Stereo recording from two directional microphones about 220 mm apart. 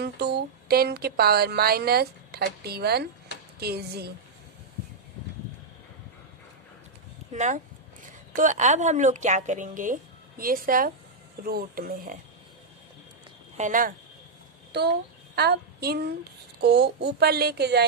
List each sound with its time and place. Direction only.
0.0 s speech: 45° right (ahead or behind)
7.3 s a woman's voice: 35° right (ahead or behind)
13.6 s a woman's voice: 35° right (ahead or behind)
14.7 s a sound: 50° right (ahead or behind)
16.6 s speech: 50° right (ahead or behind)